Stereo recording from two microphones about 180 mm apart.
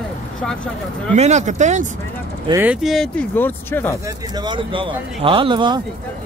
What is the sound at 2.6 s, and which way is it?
Speech, 5° right (ahead or behind).